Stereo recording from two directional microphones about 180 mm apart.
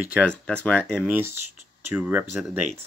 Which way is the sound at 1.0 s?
10° right (ahead or behind).